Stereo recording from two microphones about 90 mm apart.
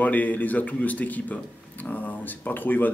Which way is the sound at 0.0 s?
20° left (ahead or behind).